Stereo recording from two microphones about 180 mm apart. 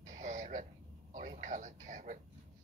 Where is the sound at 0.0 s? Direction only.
40° right (ahead or behind).